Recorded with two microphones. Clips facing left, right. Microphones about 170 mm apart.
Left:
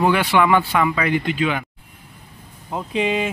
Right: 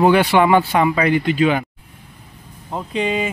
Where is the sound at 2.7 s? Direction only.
Centre (ahead or behind).